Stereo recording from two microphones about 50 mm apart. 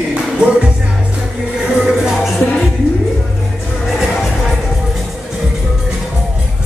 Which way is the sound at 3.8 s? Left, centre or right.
Centre.